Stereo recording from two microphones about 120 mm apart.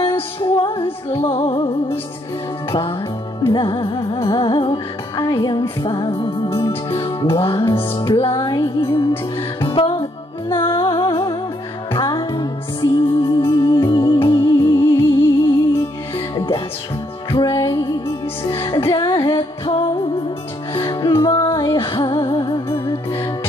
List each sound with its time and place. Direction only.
0.0 s music: 45° left (ahead or behind)
6.6 s music: 20° left (ahead or behind)
7.0 s music: 40° left (ahead or behind)
8.4 s music: 35° left (ahead or behind)
8.8 s music: 45° left (ahead or behind)